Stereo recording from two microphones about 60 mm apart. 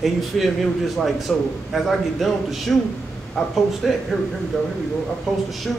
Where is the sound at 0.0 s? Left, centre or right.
Centre.